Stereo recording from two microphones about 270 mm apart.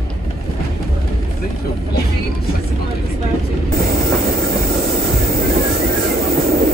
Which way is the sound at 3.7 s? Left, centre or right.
Right.